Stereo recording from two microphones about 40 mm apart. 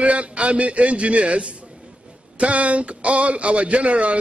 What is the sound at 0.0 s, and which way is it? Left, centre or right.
A man's voice, right.